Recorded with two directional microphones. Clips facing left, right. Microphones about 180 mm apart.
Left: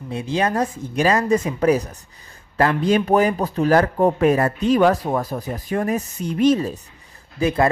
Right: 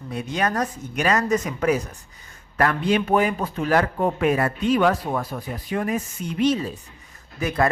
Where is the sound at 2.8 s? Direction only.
40° left (ahead or behind).